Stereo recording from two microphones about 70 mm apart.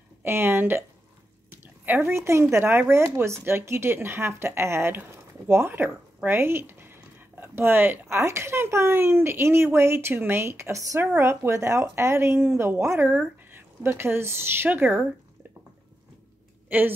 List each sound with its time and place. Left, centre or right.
0.2 s speech: right
1.9 s speech: right
8.2 s a woman's voice: right
16.6 s speech: right